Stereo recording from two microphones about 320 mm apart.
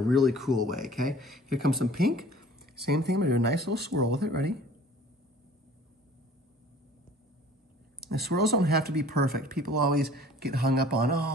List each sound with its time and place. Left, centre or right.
0.1 s speech: centre
2.6 s speech: right
8.1 s speech: right